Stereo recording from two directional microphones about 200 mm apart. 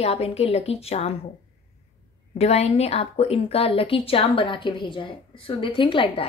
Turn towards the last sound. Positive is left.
turn(degrees=25)  # may be behind; listen again after turning